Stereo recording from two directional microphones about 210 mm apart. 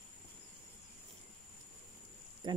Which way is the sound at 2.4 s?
20° right (ahead or behind).